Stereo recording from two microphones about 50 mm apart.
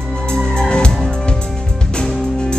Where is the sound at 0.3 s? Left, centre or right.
Centre.